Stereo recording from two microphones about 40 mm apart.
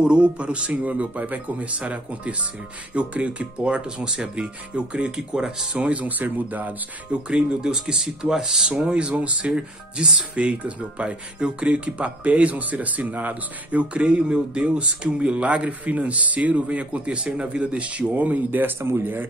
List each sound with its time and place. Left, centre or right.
0.0 s speech: right
5.8 s speech: right
7.1 s speech: right
7.7 s speech: centre; by 9.5 s right
9.5 s speech: centre; by 18.8 s right
18.8 s speech: right